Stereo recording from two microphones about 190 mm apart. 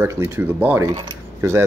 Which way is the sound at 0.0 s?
15° right (ahead or behind).